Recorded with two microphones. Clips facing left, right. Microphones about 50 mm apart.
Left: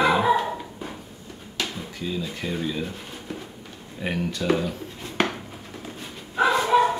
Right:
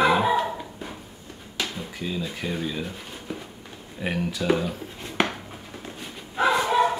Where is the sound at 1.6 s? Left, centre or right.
Centre.